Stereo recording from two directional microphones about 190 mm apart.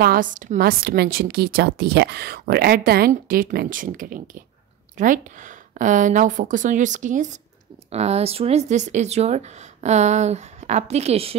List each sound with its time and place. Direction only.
0.0 s a woman's voice: 50° right (ahead or behind); by 11.3 s 30° right (ahead or behind)